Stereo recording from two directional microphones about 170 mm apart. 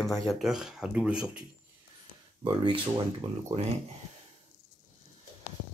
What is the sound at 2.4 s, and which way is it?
Speech, 25° right (ahead or behind).